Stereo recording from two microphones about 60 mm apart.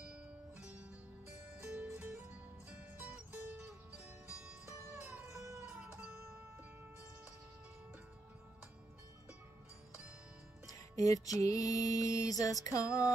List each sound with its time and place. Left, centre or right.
0.1 s music: centre
5.9 s music: right
10.7 s music: left
11.3 s mantra: left